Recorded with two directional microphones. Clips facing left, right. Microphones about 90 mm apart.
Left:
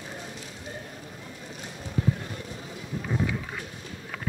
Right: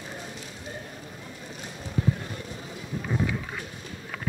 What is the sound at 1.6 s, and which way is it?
Clip-clop, 30° right (ahead or behind).